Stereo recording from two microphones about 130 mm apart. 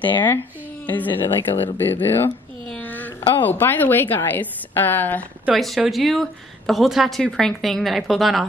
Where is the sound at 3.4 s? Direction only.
15° left (ahead or behind).